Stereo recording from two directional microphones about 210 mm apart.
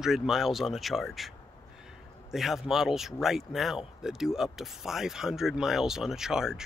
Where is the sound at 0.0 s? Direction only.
Centre (ahead or behind).